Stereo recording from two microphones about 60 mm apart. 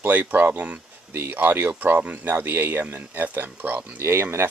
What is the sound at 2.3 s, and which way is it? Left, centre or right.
Speech, right.